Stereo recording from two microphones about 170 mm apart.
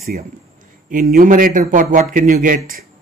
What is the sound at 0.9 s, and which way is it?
Speech, 55° right (ahead or behind).